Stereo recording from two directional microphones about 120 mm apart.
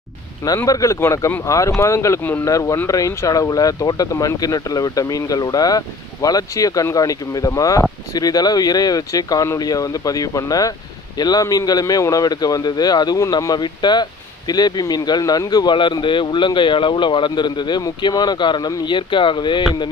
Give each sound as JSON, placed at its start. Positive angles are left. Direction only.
{"t": 0.7, "sound": "speech", "side_deg": 25}